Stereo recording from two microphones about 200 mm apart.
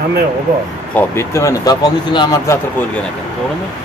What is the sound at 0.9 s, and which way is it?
Speech, 15° left (ahead or behind).